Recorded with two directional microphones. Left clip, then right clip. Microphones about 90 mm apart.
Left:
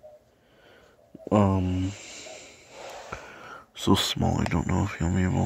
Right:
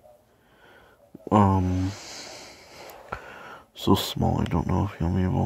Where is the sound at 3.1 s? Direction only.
20° right (ahead or behind).